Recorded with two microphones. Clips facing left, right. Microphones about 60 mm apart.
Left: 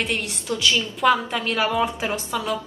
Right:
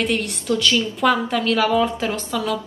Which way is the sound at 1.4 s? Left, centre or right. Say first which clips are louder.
Right 4 dB; left.